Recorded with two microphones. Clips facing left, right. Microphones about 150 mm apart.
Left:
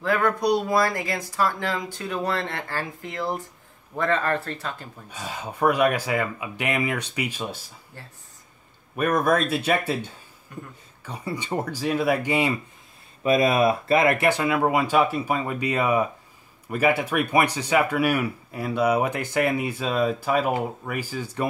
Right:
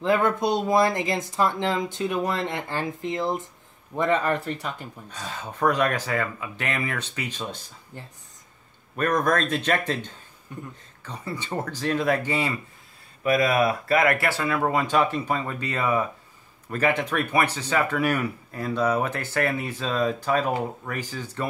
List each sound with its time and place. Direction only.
0.0 s speech: 20° right (ahead or behind)
5.1 s speech: 10° left (ahead or behind)
8.0 s speech: 20° right (ahead or behind)
8.9 s speech: 10° left (ahead or behind)
10.5 s speech: 20° right (ahead or behind)
11.0 s speech: 10° left (ahead or behind)
13.2 s speech: 25° left (ahead or behind)